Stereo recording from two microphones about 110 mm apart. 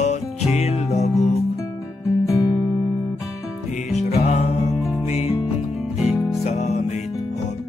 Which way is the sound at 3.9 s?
85° left.